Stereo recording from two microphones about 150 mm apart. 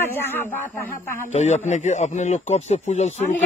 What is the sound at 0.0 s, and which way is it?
Speech, 15° left (ahead or behind).